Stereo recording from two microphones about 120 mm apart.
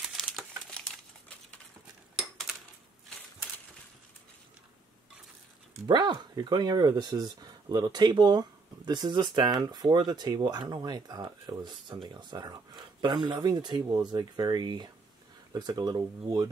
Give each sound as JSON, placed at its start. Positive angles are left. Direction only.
{"t": 0.0, "sound": "crumpling", "side_deg": 0}
{"t": 2.1, "sound": "cutlery", "side_deg": 0}
{"t": 5.9, "sound": "speech", "side_deg": -35}